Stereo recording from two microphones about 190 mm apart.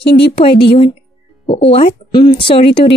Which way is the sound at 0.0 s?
60° left (ahead or behind).